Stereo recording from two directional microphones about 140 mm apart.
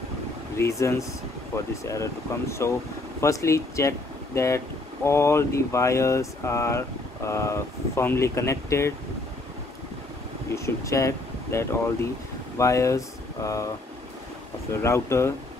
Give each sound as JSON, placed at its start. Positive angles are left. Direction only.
{"t": 0.6, "sound": "speech", "side_deg": 20}
{"t": 10.5, "sound": "speech", "side_deg": 20}
{"t": 14.8, "sound": "speech", "side_deg": 20}